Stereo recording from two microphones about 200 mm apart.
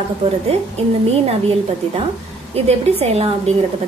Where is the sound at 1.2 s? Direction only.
30° right (ahead or behind).